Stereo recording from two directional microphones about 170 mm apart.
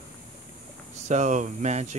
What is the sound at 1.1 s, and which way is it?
Speech, 45° right (ahead or behind).